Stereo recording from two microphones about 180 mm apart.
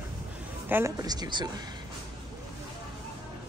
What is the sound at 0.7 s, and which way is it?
Speech, 10° right (ahead or behind).